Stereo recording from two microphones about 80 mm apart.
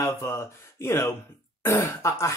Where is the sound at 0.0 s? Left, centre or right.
Left.